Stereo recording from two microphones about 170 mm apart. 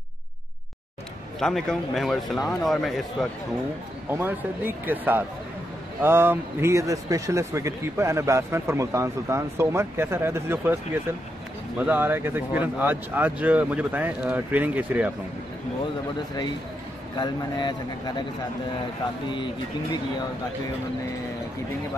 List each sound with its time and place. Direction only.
1.4 s speech: centre (ahead or behind)
4.1 s speech: 10° right (ahead or behind)
11.8 s speech: 10° right (ahead or behind)
17.2 s speech: 25° left (ahead or behind)
19.3 s speech: 30° left (ahead or behind)